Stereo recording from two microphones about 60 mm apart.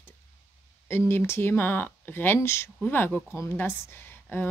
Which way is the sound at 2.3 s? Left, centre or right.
Left.